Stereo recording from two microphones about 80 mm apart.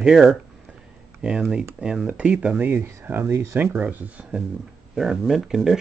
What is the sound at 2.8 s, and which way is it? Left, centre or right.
Speech, right.